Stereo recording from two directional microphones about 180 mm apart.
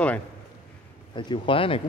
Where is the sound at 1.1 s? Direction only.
25° left (ahead or behind).